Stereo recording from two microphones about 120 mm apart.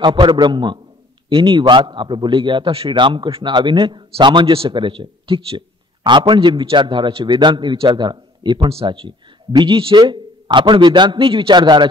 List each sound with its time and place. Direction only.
0.0 s a man's voice: 40° right (ahead or behind)
8.6 s a man's voice: 50° right (ahead or behind)